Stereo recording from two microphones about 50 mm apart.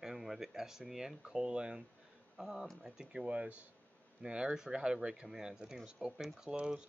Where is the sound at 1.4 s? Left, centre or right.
Right.